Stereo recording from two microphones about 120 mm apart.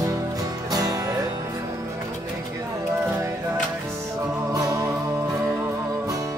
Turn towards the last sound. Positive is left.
turn(degrees=-25)  # may be behind; listen again after turning